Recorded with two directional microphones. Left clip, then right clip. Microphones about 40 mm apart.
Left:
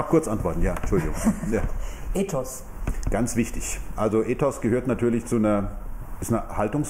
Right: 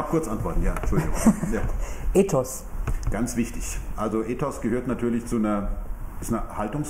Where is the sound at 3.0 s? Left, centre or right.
Left.